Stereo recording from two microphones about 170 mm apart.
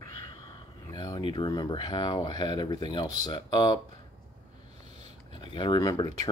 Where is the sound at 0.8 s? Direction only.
25° left (ahead or behind).